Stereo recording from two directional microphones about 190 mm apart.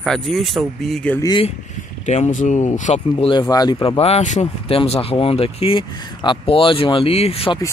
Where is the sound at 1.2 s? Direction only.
25° left (ahead or behind).